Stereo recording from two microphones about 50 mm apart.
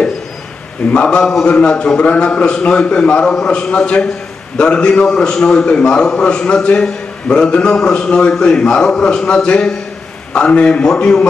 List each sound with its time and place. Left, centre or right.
0.9 s a man's voice: left